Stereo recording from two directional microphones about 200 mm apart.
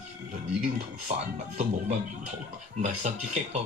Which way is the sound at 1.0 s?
35° right (ahead or behind).